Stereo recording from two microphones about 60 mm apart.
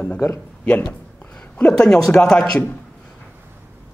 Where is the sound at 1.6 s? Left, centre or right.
Centre.